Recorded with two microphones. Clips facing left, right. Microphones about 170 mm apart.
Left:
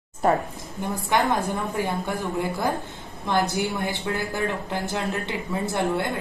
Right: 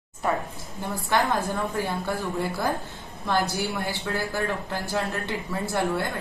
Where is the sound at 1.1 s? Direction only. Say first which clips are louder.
Left 1 dB; 15° left (ahead or behind).